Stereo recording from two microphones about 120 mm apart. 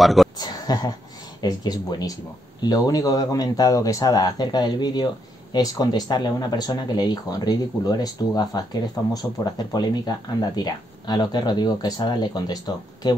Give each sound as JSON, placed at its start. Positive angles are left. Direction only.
{"t": 0.0, "sound": "speech", "side_deg": 0}
{"t": 0.4, "sound": "a sound", "side_deg": 35}
{"t": 1.4, "sound": "speech", "side_deg": 35}